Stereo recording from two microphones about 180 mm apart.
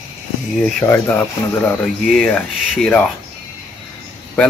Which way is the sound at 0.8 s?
15° left (ahead or behind).